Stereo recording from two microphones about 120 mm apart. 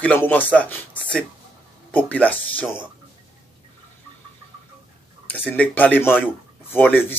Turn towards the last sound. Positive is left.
turn(degrees=15)  # may be behind; listen again after turning